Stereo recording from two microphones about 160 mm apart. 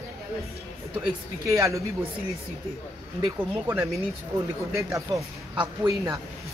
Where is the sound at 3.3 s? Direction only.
15° right (ahead or behind).